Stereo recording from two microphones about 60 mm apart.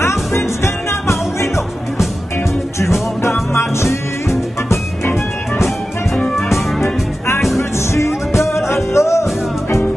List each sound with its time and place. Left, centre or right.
0.0 s music: left
2.8 s music: left
6.5 s music: left